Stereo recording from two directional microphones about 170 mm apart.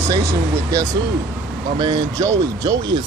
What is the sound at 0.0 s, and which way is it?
Speech, 15° right (ahead or behind).